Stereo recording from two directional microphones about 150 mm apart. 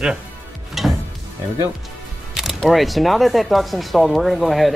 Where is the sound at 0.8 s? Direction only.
Centre (ahead or behind).